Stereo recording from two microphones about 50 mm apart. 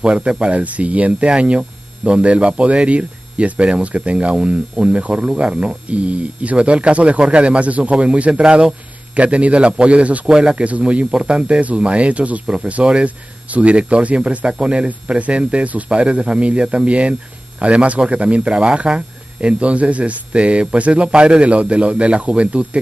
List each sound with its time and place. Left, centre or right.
0.0 s speech: right